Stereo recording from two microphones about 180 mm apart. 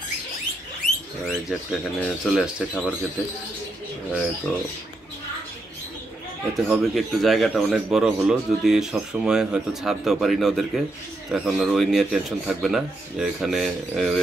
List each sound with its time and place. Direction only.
1.2 s speech: 5° left (ahead or behind)
6.5 s speech: centre (ahead or behind)